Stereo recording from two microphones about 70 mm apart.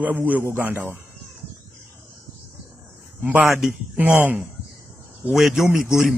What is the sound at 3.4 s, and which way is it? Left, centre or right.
Speech, centre.